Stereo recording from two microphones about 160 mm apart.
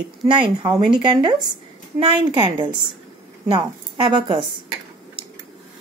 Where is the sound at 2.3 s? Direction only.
30° right (ahead or behind).